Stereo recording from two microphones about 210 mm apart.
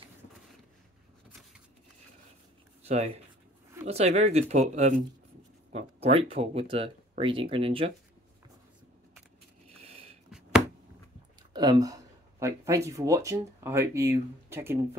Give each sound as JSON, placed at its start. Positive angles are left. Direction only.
{"t": 3.8, "sound": "speech", "side_deg": -30}
{"t": 11.5, "sound": "speech", "side_deg": -15}